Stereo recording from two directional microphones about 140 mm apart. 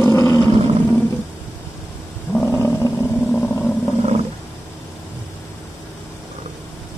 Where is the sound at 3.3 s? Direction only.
10° left (ahead or behind).